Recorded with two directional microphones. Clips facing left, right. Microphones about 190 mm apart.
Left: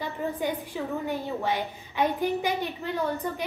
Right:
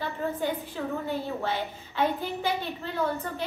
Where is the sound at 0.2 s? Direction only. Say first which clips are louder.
Even; 15° left (ahead or behind).